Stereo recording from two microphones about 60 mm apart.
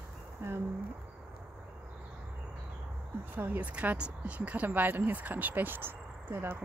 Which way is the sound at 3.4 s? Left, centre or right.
Right.